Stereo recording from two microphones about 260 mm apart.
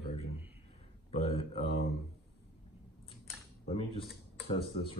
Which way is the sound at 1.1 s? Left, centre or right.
Left.